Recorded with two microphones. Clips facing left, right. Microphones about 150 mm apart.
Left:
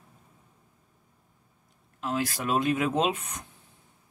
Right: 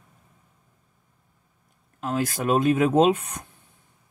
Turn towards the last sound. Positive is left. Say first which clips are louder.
# right 8 dB
turn(degrees=-45)  # may be behind; listen again after turning